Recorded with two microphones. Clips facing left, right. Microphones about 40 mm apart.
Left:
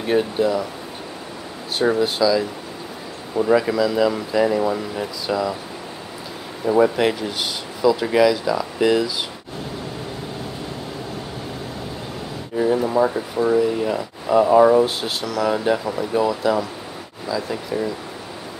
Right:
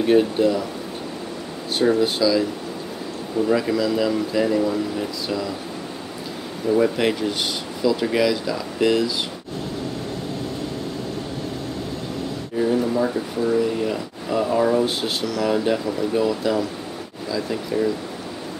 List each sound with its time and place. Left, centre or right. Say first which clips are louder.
0.0 s speech: right 2 dB; centre
2.0 s speech: left 1 dB; centre
3.5 s speech: left 5 dB; centre
6.6 s speech: left 2 dB; centre
7.0 s speech: left 1 dB; centre
12.5 s a sound: left 1 dB; centre
12.8 s speech: left 3 dB; centre
13.6 s speech: left 2 dB; centre
15.0 s speech: even; centre